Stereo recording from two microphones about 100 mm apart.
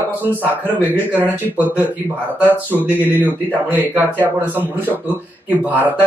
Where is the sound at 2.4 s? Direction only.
20° right (ahead or behind).